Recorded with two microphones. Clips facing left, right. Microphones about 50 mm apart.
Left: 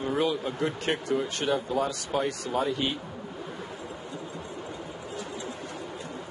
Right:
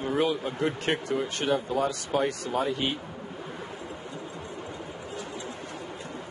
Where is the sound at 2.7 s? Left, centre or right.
Right.